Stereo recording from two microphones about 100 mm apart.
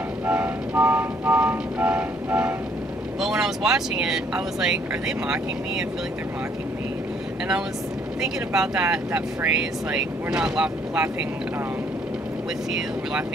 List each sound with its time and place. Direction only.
0.3 s music: 15° right (ahead or behind)
3.2 s speech: 5° right (ahead or behind)
8.2 s speech: 10° right (ahead or behind)